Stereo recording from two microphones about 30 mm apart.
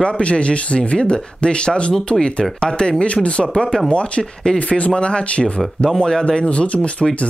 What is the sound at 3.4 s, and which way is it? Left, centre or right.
Speech, left.